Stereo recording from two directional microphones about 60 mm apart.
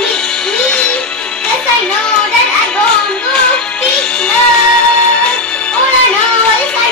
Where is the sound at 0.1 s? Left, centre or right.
Centre.